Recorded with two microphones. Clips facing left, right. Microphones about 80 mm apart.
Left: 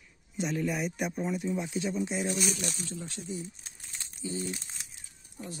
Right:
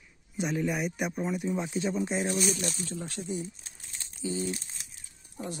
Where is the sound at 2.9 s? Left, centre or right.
Right.